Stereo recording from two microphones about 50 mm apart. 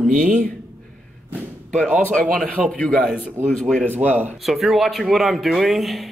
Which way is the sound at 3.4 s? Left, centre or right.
Right.